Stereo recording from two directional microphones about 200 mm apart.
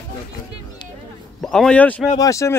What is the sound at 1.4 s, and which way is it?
Speech, centre (ahead or behind).